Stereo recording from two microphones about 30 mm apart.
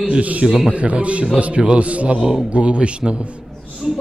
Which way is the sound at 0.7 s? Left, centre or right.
Right.